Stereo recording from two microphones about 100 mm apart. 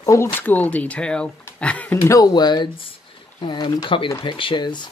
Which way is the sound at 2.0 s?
35° left (ahead or behind).